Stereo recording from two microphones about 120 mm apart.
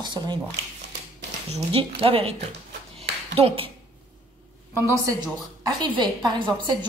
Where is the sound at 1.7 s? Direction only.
50° right (ahead or behind).